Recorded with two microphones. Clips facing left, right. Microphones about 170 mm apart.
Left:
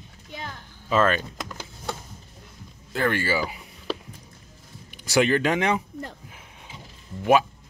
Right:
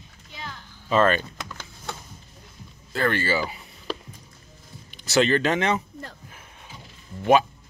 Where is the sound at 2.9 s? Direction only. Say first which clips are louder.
Even; 15° left (ahead or behind).